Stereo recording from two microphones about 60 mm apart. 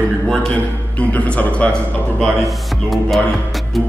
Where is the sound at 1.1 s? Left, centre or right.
Left.